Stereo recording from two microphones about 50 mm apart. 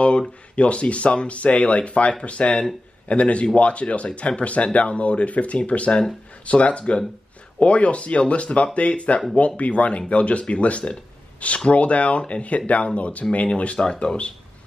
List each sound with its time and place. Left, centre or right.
0.6 s speech: left